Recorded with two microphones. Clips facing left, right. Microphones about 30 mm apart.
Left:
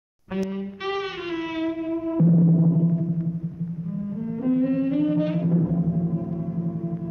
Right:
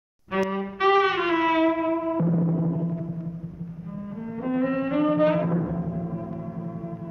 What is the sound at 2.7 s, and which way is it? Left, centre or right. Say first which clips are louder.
Gong: left 6 dB; centre.